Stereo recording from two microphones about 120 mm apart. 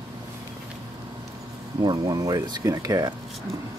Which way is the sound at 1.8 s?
30° right (ahead or behind).